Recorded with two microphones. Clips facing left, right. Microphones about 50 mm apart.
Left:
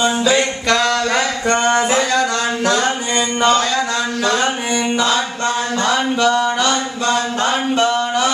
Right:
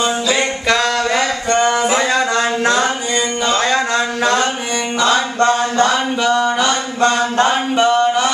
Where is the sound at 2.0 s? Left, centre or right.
Right.